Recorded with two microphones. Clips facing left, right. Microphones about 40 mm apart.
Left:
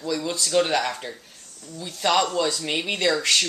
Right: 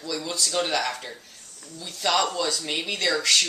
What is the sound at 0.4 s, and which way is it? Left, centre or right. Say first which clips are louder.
Speech: left 3 dB; centre.